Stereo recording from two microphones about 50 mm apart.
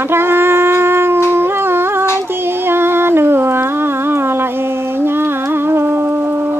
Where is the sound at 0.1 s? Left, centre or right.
Right.